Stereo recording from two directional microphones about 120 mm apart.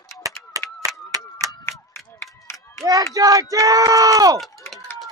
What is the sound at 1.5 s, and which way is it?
Run, 20° left (ahead or behind).